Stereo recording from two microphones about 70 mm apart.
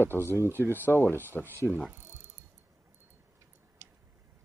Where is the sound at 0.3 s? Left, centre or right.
Right.